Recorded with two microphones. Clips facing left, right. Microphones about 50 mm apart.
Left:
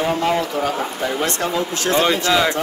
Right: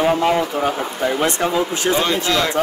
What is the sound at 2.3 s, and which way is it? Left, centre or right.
Speech, centre.